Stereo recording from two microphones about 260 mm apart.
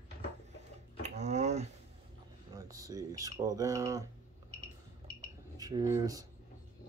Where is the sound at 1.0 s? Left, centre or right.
Right.